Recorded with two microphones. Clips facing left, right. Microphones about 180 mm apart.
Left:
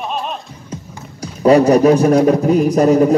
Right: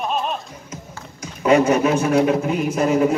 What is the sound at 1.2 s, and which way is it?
A man's voice, 35° left (ahead or behind).